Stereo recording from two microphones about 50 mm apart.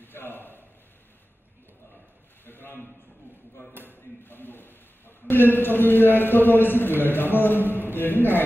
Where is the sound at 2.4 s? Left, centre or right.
Left.